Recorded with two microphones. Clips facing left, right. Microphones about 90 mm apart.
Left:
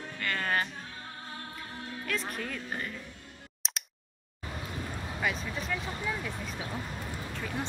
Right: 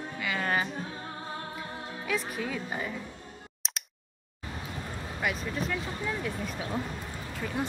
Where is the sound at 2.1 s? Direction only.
5° right (ahead or behind).